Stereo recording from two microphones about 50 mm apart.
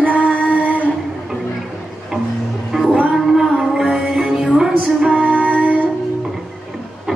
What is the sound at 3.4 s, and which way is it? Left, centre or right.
Music, centre.